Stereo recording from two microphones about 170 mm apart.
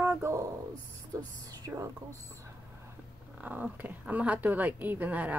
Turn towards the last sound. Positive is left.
turn(degrees=-10)  # may be behind; listen again after turning